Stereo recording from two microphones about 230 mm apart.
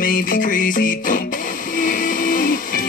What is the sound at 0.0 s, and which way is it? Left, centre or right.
Music, left.